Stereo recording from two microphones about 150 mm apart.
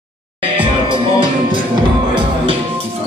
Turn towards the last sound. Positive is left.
turn(degrees=-35)  # may be behind; listen again after turning